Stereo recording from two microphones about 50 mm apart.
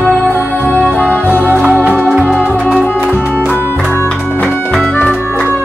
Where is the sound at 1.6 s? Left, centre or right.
Right.